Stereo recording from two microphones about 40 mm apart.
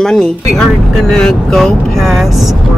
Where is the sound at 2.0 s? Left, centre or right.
Centre.